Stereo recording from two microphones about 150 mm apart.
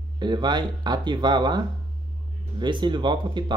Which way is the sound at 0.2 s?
30° right (ahead or behind).